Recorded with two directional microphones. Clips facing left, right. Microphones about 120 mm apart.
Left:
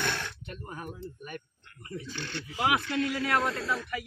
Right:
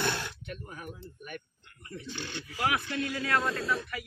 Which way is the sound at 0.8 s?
35° left (ahead or behind).